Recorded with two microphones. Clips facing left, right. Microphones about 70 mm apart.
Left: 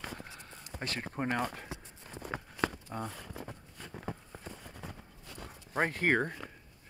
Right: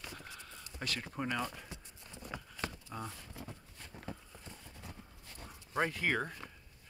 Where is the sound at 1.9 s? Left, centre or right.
Left.